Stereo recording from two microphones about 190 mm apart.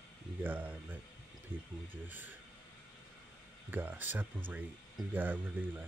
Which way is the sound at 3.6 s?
10° right (ahead or behind).